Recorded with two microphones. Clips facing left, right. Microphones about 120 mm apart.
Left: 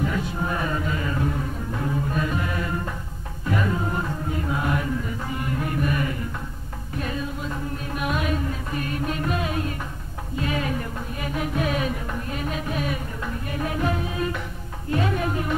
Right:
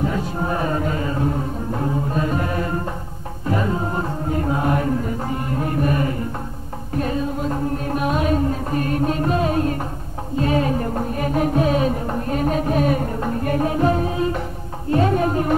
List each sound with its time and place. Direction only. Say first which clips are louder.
0.0 s chant: right 3 dB; 35° right (ahead or behind)
1.0 s music: right 4 dB; 30° right (ahead or behind)
13.7 s music: right 4 dB; 35° right (ahead or behind)